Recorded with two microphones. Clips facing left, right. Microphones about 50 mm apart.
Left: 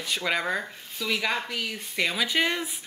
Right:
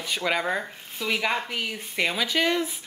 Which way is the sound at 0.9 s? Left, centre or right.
Centre.